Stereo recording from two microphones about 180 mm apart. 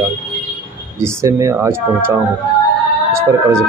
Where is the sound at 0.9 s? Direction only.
15° right (ahead or behind).